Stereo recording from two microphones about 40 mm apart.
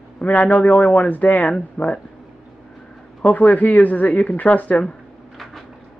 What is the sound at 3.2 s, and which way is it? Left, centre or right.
Speech, left.